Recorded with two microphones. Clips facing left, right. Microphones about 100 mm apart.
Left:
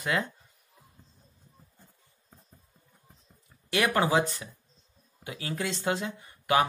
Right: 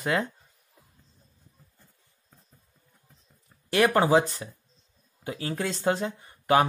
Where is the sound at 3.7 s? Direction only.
30° right (ahead or behind).